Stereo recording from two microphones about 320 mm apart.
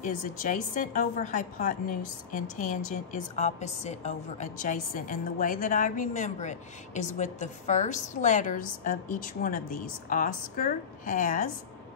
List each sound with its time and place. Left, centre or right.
0.0 s a woman's voice: left